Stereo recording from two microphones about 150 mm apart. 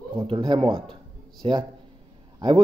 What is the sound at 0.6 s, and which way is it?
Speech, 5° left (ahead or behind).